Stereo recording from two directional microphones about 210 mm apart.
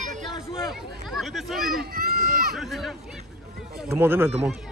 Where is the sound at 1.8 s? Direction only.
45° right (ahead or behind).